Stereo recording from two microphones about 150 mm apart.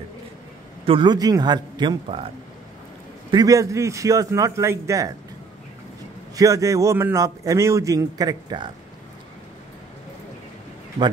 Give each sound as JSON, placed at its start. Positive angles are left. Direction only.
{"t": 0.8, "sound": "a man's voice", "side_deg": -30}
{"t": 3.3, "sound": "a man's voice", "side_deg": -25}
{"t": 6.3, "sound": "a man's voice", "side_deg": -20}